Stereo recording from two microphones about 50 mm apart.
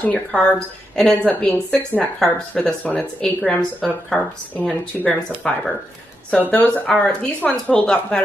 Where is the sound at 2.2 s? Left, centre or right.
Centre.